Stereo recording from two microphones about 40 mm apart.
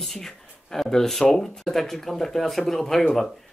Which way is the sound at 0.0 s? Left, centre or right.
Centre.